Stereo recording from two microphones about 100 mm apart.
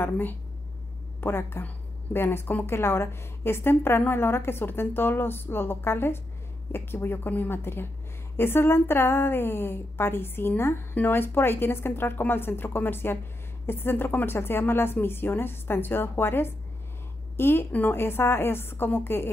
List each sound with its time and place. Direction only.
0.0 s a woman's voice: 20° left (ahead or behind)